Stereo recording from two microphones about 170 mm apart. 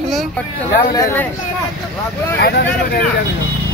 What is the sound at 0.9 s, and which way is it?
Speech, 20° left (ahead or behind).